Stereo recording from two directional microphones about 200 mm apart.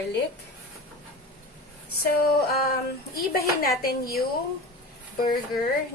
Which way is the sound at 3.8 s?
50° left (ahead or behind).